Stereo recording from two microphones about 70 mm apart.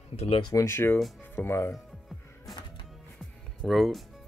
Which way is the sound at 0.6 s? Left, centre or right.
Left.